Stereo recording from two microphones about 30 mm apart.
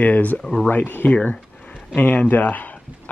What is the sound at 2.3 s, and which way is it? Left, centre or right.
Speech, left.